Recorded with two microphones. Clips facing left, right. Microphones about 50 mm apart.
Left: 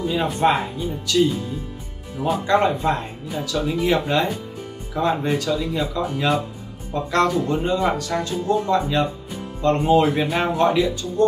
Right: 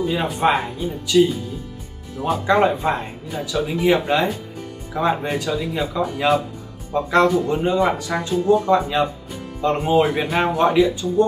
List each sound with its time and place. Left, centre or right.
0.0 s speech: centre
2.4 s speech: centre